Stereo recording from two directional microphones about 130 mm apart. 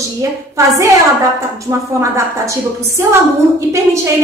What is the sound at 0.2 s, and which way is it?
A woman's voice, 25° right (ahead or behind).